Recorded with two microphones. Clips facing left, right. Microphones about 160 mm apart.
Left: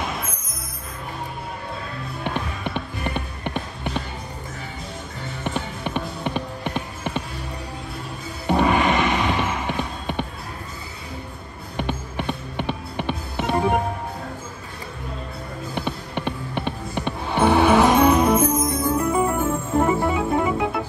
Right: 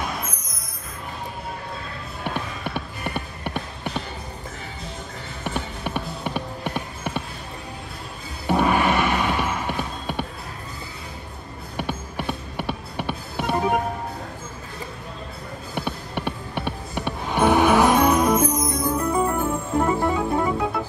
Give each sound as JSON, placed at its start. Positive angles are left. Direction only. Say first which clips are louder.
{"t": 2.2, "sound": "music", "louder": "left 1 dB", "side_deg": -10}
{"t": 5.4, "sound": "music", "louder": "left 1 dB", "side_deg": -10}
{"t": 8.5, "sound": "music", "louder": "left 1 dB", "side_deg": -10}
{"t": 9.7, "sound": "a sound", "louder": "left 1 dB", "side_deg": -10}
{"t": 11.7, "sound": "music", "louder": "left 2 dB", "side_deg": -10}
{"t": 15.7, "sound": "music", "louder": "even", "side_deg": -10}
{"t": 18.1, "sound": "music", "louder": "left 2 dB", "side_deg": 5}
{"t": 18.7, "sound": "music", "louder": "left 2 dB", "side_deg": -15}
{"t": 18.9, "sound": "music", "louder": "left 1 dB", "side_deg": 5}
{"t": 19.7, "sound": "organ", "louder": "left 1 dB", "side_deg": 5}